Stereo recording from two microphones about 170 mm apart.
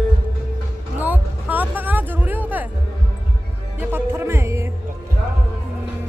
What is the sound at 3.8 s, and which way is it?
Speech, 10° right (ahead or behind).